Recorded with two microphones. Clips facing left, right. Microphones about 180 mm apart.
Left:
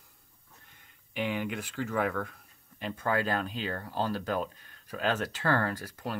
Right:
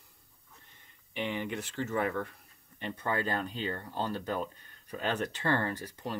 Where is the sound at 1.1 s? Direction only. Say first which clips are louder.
Left 2 dB; 5° left (ahead or behind).